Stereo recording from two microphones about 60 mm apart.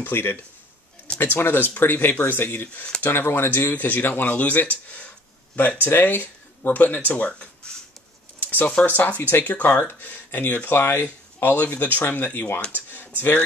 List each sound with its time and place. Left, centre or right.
0.0 s speech: left
7.1 s speech: left
12.7 s computer keyboard: left